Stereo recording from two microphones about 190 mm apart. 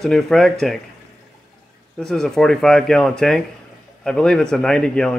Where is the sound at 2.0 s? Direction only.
Centre (ahead or behind).